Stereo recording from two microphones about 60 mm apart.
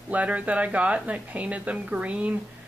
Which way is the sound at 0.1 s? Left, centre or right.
Right.